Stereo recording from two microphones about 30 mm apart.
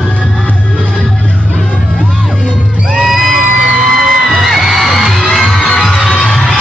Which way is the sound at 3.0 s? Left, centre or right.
Centre.